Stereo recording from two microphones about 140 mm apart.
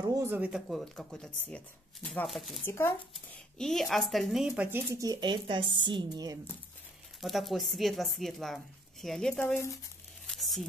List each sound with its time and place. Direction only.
0.0 s a sound: 20° right (ahead or behind)
0.4 s speech: 5° right (ahead or behind)
2.6 s speech: 15° left (ahead or behind)
3.5 s speech: 5° left (ahead or behind); by 6.3 s 30° right (ahead or behind)
7.2 s speech: centre (ahead or behind)
9.3 s speech: 15° left (ahead or behind)
10.2 s a sound: centre (ahead or behind)